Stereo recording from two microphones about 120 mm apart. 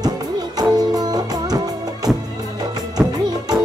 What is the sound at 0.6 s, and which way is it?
Music, 35° right (ahead or behind).